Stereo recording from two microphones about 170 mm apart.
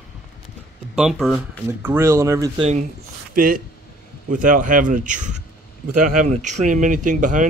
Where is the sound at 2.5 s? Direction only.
35° right (ahead or behind).